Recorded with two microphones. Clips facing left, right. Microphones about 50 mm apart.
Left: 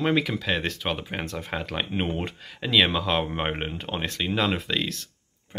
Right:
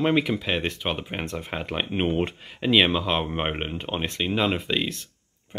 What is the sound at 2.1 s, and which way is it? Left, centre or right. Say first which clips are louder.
Speech: right 5 dB; right.